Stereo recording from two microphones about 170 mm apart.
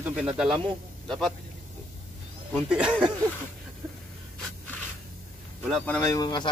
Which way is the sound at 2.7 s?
5° right (ahead or behind).